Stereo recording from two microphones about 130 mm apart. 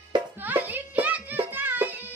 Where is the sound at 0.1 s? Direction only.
35° right (ahead or behind).